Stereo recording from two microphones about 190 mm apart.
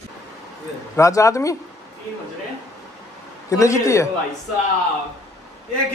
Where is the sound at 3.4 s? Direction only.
15° left (ahead or behind).